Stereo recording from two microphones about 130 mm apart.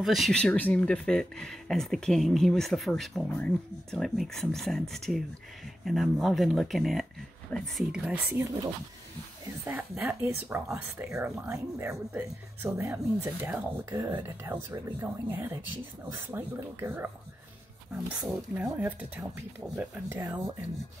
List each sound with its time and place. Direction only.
0.0 s speech: centre (ahead or behind)
7.9 s speech: 10° right (ahead or behind)
8.3 s speech: 20° right (ahead or behind)
9.7 s speech: 10° right (ahead or behind)
17.9 s speech: centre (ahead or behind)
20.2 s speech: 25° right (ahead or behind)